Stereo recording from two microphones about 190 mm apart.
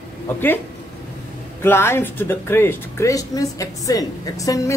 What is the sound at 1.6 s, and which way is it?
Speech, 10° left (ahead or behind).